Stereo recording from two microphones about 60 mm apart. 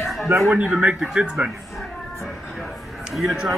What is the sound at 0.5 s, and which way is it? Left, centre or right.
Speech, right.